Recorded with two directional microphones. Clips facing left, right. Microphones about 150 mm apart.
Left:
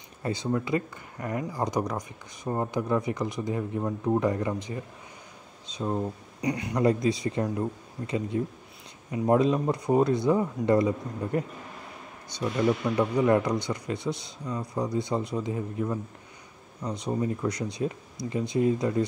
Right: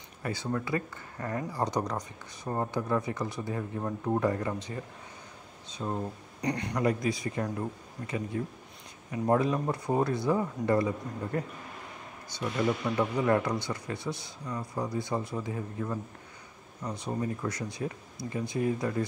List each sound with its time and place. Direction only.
0.2 s speech: 20° left (ahead or behind)
6.8 s speech: 25° left (ahead or behind)
12.8 s speech: 10° left (ahead or behind)